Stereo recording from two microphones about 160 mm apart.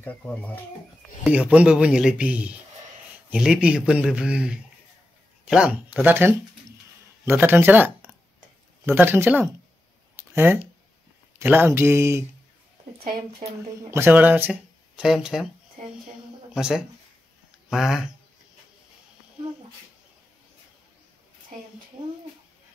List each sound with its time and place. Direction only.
0.0 s speech: 10° left (ahead or behind)
1.2 s a man's voice: 10° right (ahead or behind)
10.1 s a sound: 15° right (ahead or behind)
11.3 s a man's voice: 15° right (ahead or behind)
13.4 s speech: 55° right (ahead or behind)
13.8 s speech: 15° right (ahead or behind)
16.5 s a man's voice: 5° right (ahead or behind)